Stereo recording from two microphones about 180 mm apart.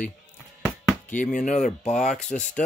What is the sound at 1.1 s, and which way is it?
Speech, 45° left (ahead or behind).